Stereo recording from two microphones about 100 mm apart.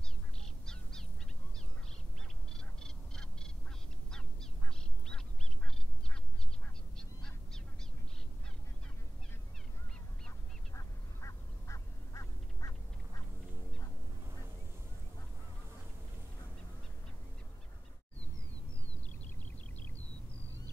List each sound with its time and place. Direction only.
0.4 s crow: 5° left (ahead or behind)
2.5 s owl: 5° left (ahead or behind)
4.1 s duck: 5° left (ahead or behind)
7.0 s duck: 5° left (ahead or behind)
10.7 s quack: 30° left (ahead or behind)